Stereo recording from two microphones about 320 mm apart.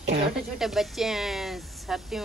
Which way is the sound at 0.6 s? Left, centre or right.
Centre.